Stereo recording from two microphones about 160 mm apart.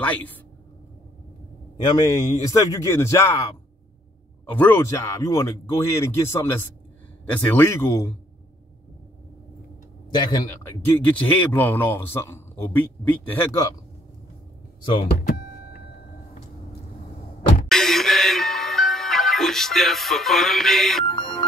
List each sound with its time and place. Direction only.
0.0 s speech: 10° left (ahead or behind)
1.8 s a man's voice: 25° left (ahead or behind)
4.6 s speech: 15° left (ahead or behind)
10.1 s a man's voice: 25° left (ahead or behind)
11.1 s speech: 10° left (ahead or behind)
17.6 s music: centre (ahead or behind)
21.1 s music: 30° left (ahead or behind)